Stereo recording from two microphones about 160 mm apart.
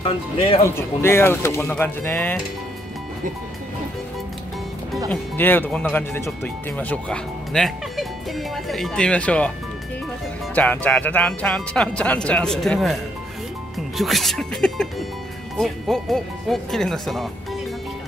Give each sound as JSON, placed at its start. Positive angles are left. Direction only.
{"t": 0.0, "sound": "speech", "side_deg": 35}
{"t": 0.7, "sound": "speech", "side_deg": 15}
{"t": 5.1, "sound": "speech", "side_deg": 10}
{"t": 10.5, "sound": "speech", "side_deg": 10}